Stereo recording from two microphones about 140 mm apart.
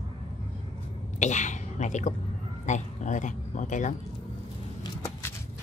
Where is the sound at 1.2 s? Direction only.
60° left (ahead or behind).